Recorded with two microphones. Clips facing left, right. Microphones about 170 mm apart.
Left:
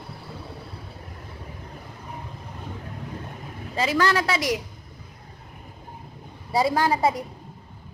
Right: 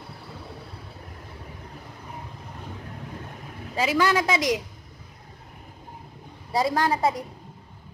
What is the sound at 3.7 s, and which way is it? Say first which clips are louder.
Speech: even; 10° right (ahead or behind).